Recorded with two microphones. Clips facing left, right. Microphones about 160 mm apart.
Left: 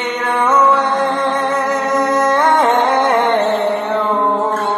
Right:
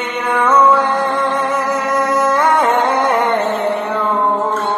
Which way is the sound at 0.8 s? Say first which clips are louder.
Left 1 dB; centre (ahead or behind).